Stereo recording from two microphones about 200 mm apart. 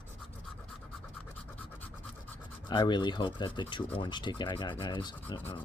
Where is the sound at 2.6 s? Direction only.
25° left (ahead or behind).